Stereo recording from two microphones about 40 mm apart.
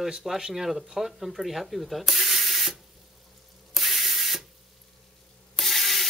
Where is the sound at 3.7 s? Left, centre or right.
Centre.